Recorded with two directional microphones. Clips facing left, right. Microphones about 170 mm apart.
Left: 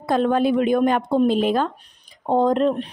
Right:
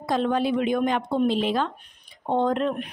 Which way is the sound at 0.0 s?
50° left (ahead or behind).